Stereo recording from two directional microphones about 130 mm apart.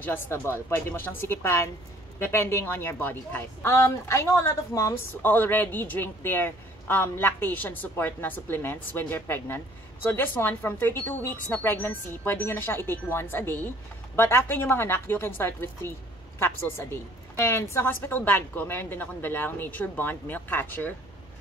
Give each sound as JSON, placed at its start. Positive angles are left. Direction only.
{"t": 0.0, "sound": "a woman's voice", "side_deg": 15}